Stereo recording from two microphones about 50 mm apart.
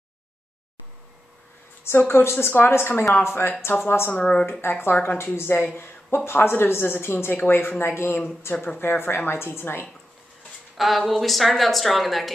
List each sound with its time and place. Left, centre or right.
2.0 s speech: left
4.1 s speech: left
4.5 s speech: left
10.8 s a woman's voice: centre